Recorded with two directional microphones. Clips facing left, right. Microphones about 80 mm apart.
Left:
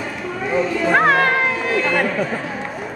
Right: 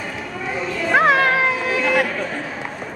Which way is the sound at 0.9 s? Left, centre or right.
Centre.